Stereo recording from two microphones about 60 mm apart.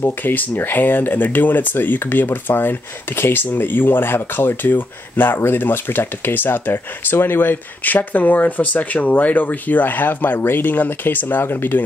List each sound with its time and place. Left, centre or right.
0.0 s speech: left